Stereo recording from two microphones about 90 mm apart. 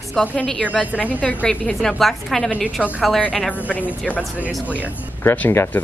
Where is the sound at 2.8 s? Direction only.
15° left (ahead or behind).